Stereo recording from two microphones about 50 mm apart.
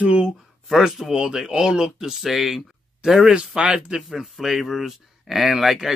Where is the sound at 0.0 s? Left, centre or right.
Right.